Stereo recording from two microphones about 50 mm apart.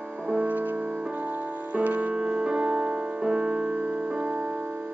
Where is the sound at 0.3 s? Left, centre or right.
Right.